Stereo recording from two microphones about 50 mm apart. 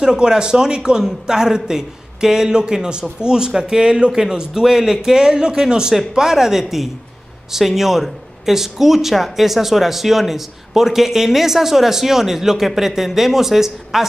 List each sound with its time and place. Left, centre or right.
0.0 s a man's voice: centre